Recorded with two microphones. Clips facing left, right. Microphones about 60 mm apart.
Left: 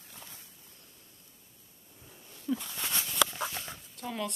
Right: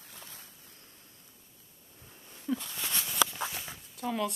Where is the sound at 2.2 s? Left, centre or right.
Centre.